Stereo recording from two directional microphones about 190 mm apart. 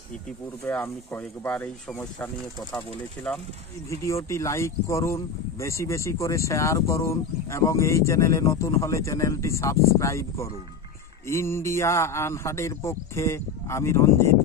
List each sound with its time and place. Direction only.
0.7 s speech: 10° left (ahead or behind)
3.9 s speech: 15° left (ahead or behind)